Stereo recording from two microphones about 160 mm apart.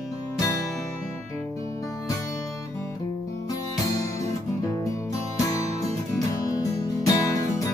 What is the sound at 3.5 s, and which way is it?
Music, 20° left (ahead or behind).